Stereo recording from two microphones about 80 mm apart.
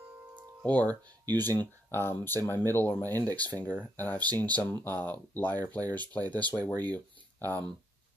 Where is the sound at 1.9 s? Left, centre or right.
Left.